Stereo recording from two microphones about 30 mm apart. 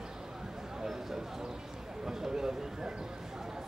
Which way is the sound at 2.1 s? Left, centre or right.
Centre.